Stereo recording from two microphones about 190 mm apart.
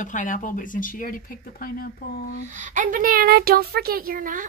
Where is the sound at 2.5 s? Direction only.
40° right (ahead or behind).